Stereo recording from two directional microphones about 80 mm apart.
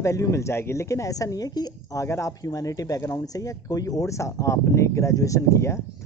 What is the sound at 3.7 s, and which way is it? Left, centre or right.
Speech, left.